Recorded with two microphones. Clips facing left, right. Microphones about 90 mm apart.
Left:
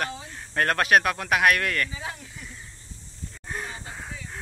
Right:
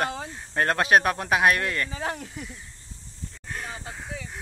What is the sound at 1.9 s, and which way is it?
Speech, 55° right (ahead or behind).